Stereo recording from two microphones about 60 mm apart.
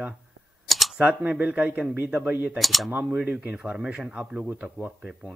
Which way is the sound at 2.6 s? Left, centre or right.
Centre.